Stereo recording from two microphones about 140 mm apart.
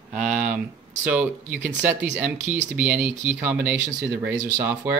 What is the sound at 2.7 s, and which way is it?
Speech, 10° right (ahead or behind).